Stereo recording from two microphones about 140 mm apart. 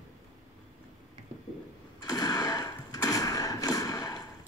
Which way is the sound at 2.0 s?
25° left (ahead or behind).